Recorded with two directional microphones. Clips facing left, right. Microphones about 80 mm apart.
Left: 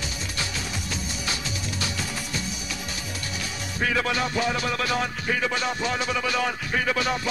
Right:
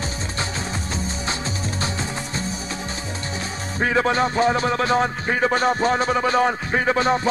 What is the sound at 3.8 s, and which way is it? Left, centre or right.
Music, right.